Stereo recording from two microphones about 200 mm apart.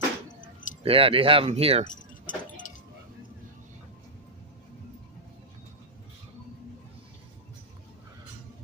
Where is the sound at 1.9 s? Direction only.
40° left (ahead or behind).